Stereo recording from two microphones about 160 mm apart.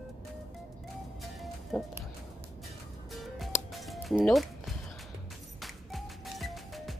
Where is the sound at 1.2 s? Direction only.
Centre (ahead or behind).